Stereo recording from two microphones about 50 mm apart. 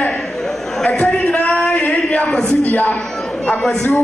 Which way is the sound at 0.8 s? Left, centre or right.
Left.